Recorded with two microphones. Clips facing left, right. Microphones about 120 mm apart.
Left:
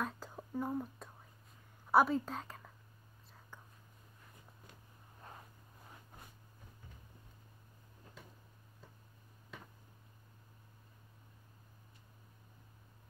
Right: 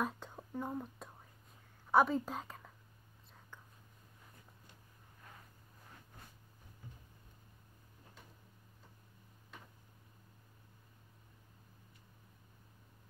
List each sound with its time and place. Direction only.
0.0 s whispering: centre (ahead or behind)
1.9 s speech: 5° left (ahead or behind)
5.2 s a sound: 30° left (ahead or behind)